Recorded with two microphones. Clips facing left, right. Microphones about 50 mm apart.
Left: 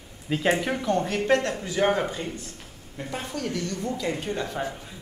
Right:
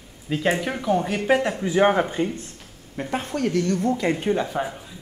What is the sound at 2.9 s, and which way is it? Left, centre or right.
Speech, right.